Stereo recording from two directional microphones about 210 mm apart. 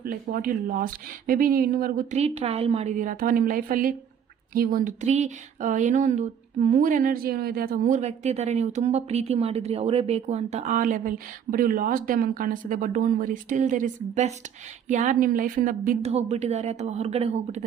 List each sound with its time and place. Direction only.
0.0 s speech: 45° right (ahead or behind)